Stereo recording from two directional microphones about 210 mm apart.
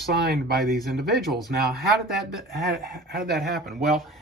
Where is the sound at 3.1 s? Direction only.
50° right (ahead or behind).